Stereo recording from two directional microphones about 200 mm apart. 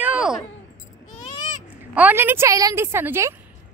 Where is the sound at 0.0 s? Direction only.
5° right (ahead or behind).